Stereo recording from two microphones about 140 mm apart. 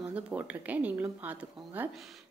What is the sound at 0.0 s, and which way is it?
A woman's voice, 10° right (ahead or behind).